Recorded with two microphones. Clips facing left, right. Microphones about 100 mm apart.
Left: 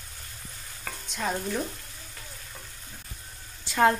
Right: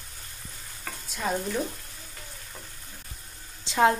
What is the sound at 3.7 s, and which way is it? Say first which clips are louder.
Speech: even; 20° right (ahead or behind).